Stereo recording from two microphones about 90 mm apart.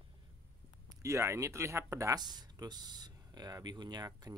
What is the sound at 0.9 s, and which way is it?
Speech, 35° right (ahead or behind).